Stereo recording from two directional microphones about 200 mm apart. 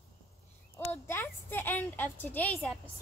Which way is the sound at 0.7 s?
10° left (ahead or behind).